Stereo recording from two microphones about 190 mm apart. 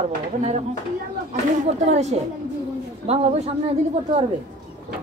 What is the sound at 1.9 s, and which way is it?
A woman's voice, 35° right (ahead or behind).